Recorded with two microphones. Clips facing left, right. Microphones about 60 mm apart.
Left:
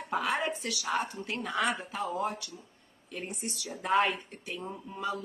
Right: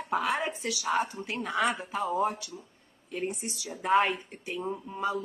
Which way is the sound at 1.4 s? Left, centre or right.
Centre.